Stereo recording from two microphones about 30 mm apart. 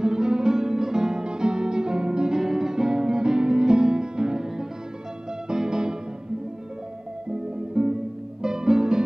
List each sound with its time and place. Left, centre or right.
0.0 s music: right
2.4 s music: centre
7.2 s music: right